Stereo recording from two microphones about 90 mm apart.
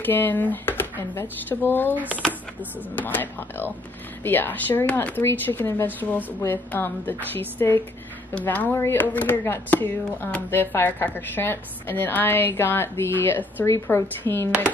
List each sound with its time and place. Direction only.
0.0 s speech: 20° left (ahead or behind)
3.0 s speech: 20° left (ahead or behind)